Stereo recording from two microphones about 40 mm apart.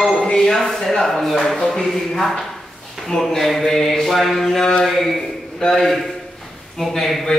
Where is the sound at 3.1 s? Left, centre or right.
Centre.